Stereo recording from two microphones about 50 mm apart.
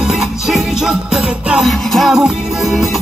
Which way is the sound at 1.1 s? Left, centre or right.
Right.